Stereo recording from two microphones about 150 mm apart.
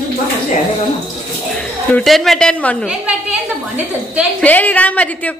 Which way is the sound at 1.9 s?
Centre (ahead or behind).